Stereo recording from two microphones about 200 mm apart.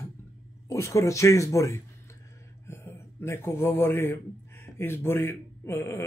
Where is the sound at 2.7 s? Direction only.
15° left (ahead or behind).